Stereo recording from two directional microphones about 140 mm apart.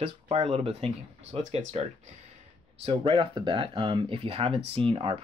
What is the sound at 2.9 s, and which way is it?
Speech, 35° right (ahead or behind).